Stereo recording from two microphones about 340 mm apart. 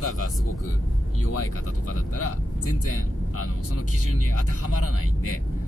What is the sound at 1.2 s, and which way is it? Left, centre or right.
Speech, left.